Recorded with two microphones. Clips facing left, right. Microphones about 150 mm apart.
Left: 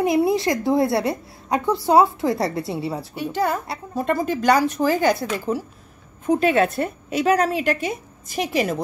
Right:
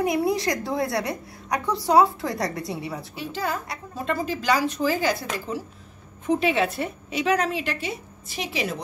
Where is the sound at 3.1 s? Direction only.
55° left (ahead or behind).